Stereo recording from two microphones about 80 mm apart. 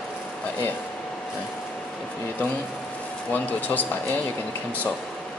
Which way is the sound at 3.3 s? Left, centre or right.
Centre.